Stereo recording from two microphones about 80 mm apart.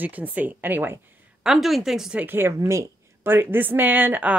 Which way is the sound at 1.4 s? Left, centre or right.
Centre.